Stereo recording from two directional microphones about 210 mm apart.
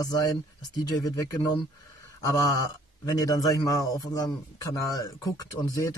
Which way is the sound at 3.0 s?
15° left (ahead or behind).